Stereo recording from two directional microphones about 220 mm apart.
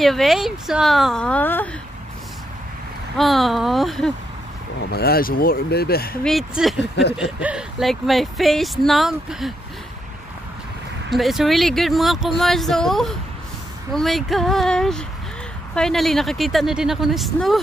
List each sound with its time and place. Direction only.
0.0 s speech: centre (ahead or behind)
3.2 s speech: centre (ahead or behind)
4.9 s speech: 45° left (ahead or behind)
6.2 s speech: centre (ahead or behind)
11.1 s speech: centre (ahead or behind)